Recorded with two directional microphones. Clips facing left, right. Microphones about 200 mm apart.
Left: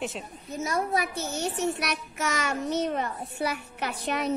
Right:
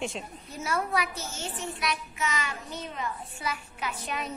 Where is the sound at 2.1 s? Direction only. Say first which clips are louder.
Left 2 dB; 45° left (ahead or behind).